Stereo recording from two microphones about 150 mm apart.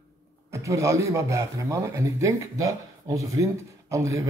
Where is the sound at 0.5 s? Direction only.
20° right (ahead or behind).